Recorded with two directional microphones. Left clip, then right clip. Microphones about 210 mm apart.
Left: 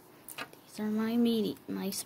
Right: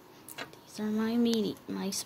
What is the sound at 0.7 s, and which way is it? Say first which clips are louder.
A woman's voice: right 1 dB; 10° left (ahead or behind).